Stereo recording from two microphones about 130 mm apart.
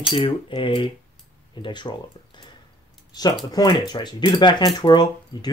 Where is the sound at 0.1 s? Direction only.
45° left (ahead or behind).